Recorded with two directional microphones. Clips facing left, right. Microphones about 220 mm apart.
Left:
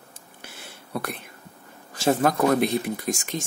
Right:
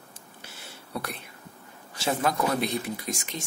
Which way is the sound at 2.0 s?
45° left (ahead or behind).